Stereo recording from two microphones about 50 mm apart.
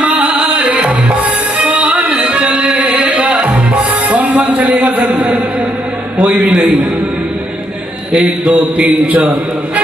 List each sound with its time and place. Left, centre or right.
0.0 s music: right
6.2 s a man's voice: right
8.1 s a man's voice: right